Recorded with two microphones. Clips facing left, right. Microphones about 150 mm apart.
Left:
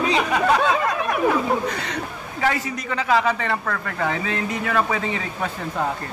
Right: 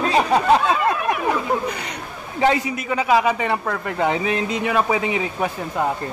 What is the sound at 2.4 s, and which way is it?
A man's voice, 20° right (ahead or behind).